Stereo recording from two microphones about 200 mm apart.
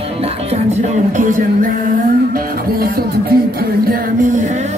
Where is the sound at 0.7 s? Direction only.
40° right (ahead or behind).